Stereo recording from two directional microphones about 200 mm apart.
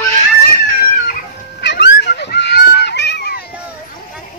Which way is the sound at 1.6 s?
60° left (ahead or behind).